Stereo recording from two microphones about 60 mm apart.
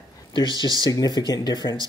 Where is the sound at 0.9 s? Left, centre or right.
Left.